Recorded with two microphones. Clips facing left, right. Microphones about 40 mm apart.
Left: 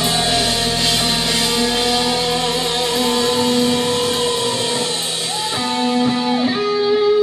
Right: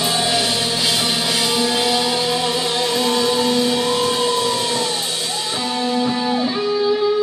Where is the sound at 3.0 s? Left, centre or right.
Centre.